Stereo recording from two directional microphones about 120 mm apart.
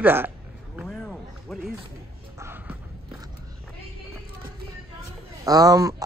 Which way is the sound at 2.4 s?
20° right (ahead or behind).